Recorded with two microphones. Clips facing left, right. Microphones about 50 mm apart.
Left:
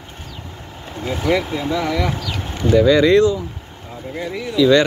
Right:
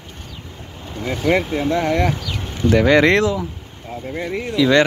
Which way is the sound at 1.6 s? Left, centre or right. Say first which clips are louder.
Right 3 dB; right.